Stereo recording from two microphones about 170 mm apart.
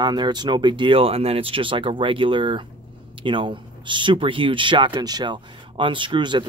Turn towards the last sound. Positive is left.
turn(degrees=-30)  # may be behind; listen again after turning